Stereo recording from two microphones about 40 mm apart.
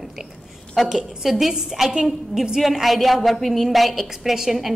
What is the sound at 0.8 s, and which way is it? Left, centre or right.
A woman's voice, centre.